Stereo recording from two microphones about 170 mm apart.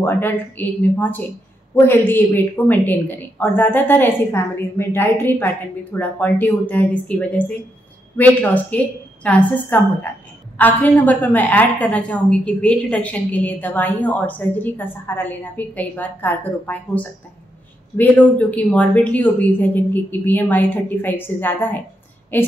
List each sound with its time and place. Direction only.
0.0 s a woman's voice: 10° left (ahead or behind)